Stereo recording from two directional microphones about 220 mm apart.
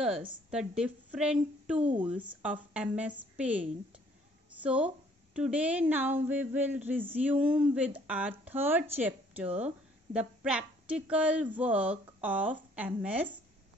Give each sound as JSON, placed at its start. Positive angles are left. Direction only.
{"t": 0.5, "sound": "a woman's voice", "side_deg": -5}
{"t": 1.8, "sound": "speech", "side_deg": -30}
{"t": 2.4, "sound": "a woman's voice", "side_deg": -5}